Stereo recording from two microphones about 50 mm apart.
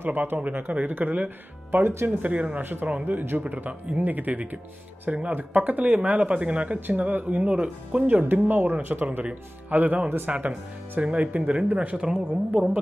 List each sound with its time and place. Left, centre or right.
0.0 s speech: right
1.8 s speech: right
2.0 s speech: right
11.0 s speech: right